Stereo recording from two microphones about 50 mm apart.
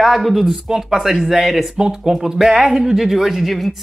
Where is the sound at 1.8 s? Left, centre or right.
Centre.